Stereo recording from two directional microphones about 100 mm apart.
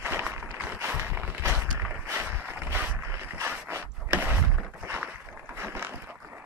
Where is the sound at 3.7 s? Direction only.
20° right (ahead or behind).